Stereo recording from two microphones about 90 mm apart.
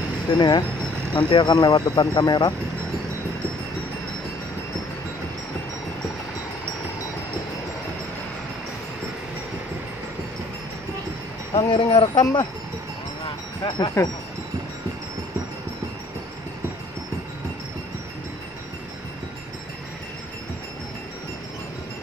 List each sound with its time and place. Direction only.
0.4 s speech: 55° left (ahead or behind)
11.5 s speech: 80° left
12.2 s speech: 50° left (ahead or behind)
14.0 s speech: 30° left (ahead or behind)